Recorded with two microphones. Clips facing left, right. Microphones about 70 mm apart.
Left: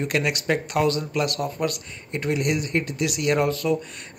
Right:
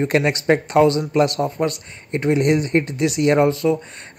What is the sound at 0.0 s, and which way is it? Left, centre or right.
Speech, right.